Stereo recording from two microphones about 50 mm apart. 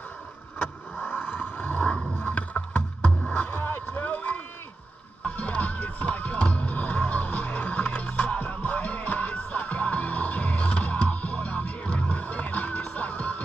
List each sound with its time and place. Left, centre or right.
0.6 s vehicle: left
2.1 s boat: left
5.2 s music: left